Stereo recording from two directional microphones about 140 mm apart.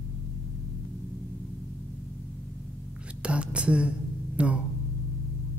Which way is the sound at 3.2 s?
10° right (ahead or behind).